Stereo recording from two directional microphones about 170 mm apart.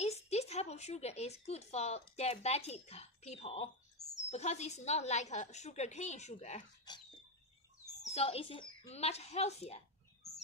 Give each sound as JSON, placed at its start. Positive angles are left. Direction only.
{"t": 0.0, "sound": "a woman's voice", "side_deg": 40}
{"t": 8.1, "sound": "a woman's voice", "side_deg": 35}